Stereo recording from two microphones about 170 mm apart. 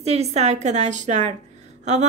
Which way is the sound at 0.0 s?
40° right (ahead or behind).